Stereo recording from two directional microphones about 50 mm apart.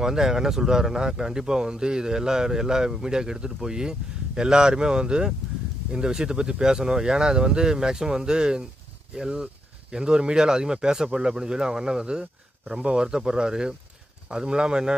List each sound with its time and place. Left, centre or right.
0.0 s speech: centre